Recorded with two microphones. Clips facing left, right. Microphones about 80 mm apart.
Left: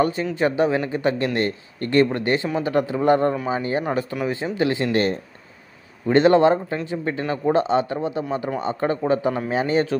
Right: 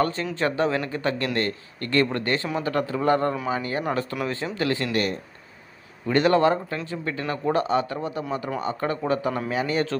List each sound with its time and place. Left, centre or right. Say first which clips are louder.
0.0 s a man's voice: left 4 dB; centre; by 9.8 s left